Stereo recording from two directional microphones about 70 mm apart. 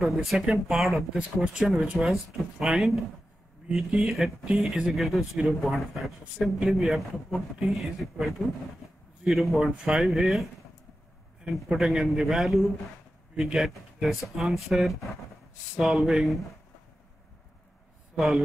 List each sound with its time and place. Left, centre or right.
0.0 s a man's voice: centre
11.5 s a man's voice: centre
18.1 s speech: centre